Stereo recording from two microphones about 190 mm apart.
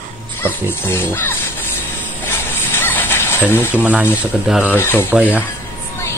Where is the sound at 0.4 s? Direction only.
10° left (ahead or behind).